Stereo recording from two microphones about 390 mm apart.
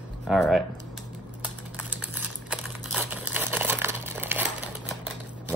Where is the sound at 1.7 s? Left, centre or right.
Centre.